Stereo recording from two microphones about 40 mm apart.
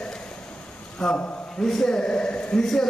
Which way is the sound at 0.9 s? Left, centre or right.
Left.